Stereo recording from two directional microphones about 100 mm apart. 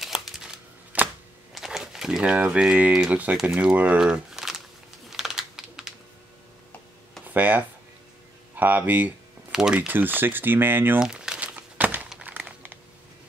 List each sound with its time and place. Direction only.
0.0 s a sound: 5° right (ahead or behind)
1.5 s speech: 5° right (ahead or behind)
5.1 s typing: 5° right (ahead or behind)
7.2 s speech: 15° right (ahead or behind)
9.5 s speech: 5° right (ahead or behind)
9.8 s speech: 20° right (ahead or behind)
11.0 s crumpling: 10° right (ahead or behind)